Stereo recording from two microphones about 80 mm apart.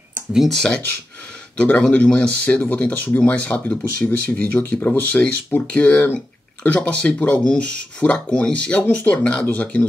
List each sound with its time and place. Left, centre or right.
0.4 s speech: centre